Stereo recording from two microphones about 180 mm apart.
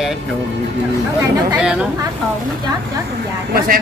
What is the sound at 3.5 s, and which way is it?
Speech, 55° right (ahead or behind).